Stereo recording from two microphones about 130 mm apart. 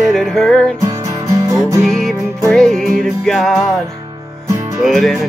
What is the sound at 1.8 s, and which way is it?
Music, 5° left (ahead or behind).